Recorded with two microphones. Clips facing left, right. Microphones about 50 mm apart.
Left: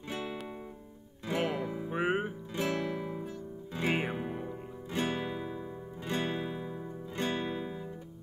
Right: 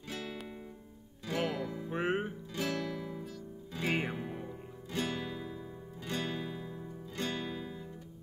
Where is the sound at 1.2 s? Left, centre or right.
Left.